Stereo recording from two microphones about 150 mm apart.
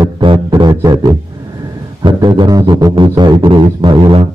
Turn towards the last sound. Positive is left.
turn(degrees=-30)  # may be behind; listen again after turning